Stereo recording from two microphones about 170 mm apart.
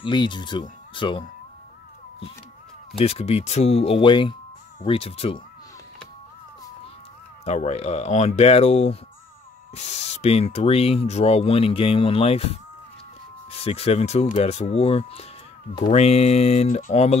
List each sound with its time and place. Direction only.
0.0 s speech: 25° left (ahead or behind)
3.0 s speech: 35° left (ahead or behind)
7.4 s speech: 40° left (ahead or behind)